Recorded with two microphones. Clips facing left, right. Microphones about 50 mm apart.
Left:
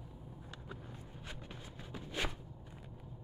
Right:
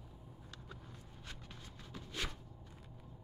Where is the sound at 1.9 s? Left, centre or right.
Left.